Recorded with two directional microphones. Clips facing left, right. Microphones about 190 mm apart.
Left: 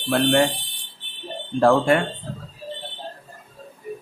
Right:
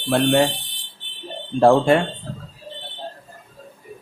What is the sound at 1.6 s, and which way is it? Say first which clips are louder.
Speech: right 3 dB; 25° right (ahead or behind).